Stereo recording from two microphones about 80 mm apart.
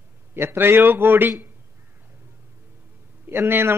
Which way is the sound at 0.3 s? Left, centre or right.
Right.